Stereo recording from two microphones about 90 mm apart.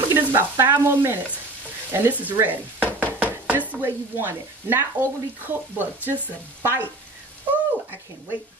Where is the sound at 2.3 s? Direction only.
20° right (ahead or behind).